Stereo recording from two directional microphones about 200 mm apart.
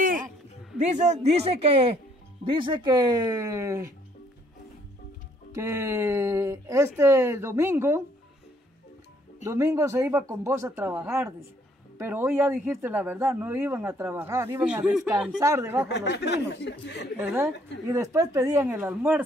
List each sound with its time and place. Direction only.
0.7 s speech: 35° right (ahead or behind); by 3.9 s 15° right (ahead or behind)
5.5 s speech: 15° right (ahead or behind)
9.4 s speech: 15° right (ahead or behind)
15.9 s speech: 60° left (ahead or behind)
17.2 s speech: 10° right (ahead or behind)